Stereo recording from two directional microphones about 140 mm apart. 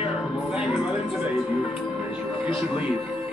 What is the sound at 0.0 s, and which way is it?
Music, 5° right (ahead or behind).